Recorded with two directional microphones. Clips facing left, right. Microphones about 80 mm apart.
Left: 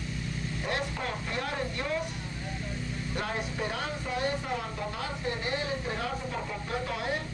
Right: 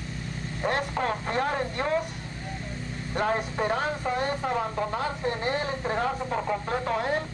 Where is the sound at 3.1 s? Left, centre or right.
Right.